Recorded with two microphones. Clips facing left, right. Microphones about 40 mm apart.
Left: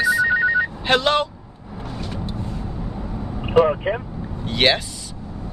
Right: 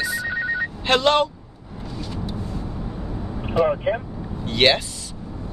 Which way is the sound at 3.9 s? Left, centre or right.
Centre.